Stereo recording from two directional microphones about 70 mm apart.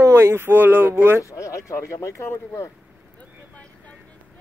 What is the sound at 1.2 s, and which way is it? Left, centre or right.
Speech, left.